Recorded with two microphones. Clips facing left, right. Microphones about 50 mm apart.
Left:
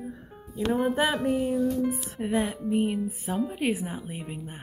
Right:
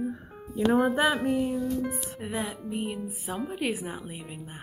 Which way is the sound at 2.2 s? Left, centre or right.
Left.